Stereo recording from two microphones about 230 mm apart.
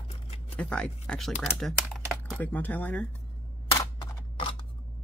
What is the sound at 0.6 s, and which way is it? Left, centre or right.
Speech, centre.